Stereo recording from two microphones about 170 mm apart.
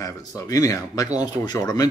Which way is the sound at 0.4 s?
20° left (ahead or behind).